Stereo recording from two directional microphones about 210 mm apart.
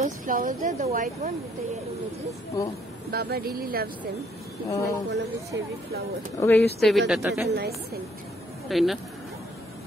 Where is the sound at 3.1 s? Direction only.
45° right (ahead or behind).